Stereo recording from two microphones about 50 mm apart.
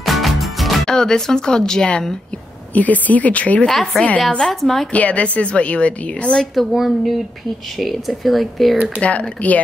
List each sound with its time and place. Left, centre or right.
0.0 s music: centre
0.8 s speech: centre
2.7 s speech: left
3.6 s speech: centre
4.9 s a woman's voice: left
6.7 s speech: centre
9.0 s a woman's voice: left